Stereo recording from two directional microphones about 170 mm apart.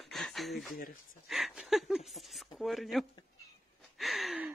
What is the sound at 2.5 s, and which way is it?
Speech, centre (ahead or behind).